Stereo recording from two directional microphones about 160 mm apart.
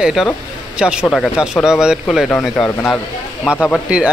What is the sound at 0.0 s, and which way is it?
Speech, 5° right (ahead or behind).